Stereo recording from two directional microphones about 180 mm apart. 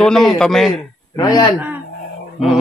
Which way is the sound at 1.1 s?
25° left (ahead or behind).